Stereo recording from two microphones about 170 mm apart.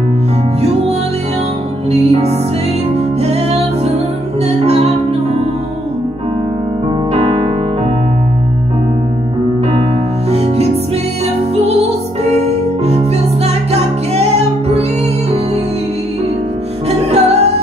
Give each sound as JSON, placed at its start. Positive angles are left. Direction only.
{"t": 0.6, "sound": "music", "side_deg": -35}
{"t": 7.2, "sound": "music", "side_deg": -35}
{"t": 10.3, "sound": "music", "side_deg": -40}
{"t": 17.1, "sound": "music", "side_deg": -40}